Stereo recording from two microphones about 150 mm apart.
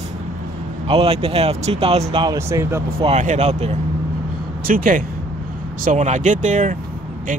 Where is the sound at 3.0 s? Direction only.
45° right (ahead or behind).